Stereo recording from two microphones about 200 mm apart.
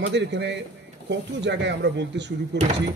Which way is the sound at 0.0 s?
60° right (ahead or behind).